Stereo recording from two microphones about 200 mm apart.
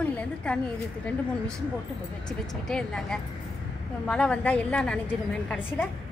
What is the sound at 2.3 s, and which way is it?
A woman's voice, centre (ahead or behind).